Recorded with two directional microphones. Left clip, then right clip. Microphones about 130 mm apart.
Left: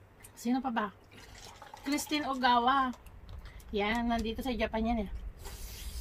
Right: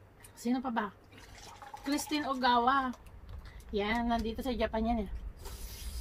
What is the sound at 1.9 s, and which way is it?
A woman's voice, 10° right (ahead or behind).